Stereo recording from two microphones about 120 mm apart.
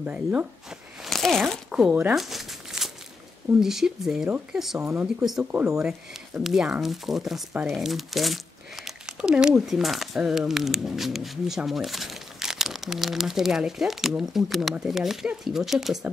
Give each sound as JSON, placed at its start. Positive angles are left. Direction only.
{"t": 0.0, "sound": "speech", "side_deg": -10}
{"t": 1.0, "sound": "speech", "side_deg": 0}
{"t": 2.1, "sound": "crumpling", "side_deg": 0}
{"t": 3.6, "sound": "speech", "side_deg": -5}
{"t": 4.7, "sound": "speech", "side_deg": -20}
{"t": 5.0, "sound": "speech", "side_deg": -5}